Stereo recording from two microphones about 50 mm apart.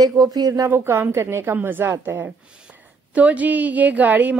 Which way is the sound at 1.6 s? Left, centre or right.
Right.